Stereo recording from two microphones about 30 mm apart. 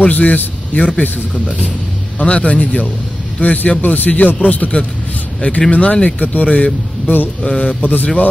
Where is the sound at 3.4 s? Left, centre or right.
Left.